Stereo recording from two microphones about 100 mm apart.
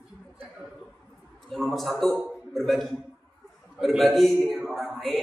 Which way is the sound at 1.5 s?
Centre (ahead or behind).